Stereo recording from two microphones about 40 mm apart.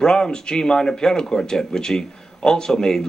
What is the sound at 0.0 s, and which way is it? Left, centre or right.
Speech, centre.